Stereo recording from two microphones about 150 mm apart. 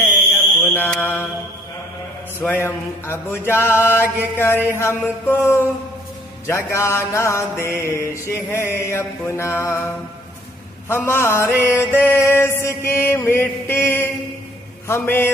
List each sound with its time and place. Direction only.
0.0 s mantra: 15° left (ahead or behind)
2.4 s mantra: 15° left (ahead or behind)
10.9 s mantra: 15° left (ahead or behind)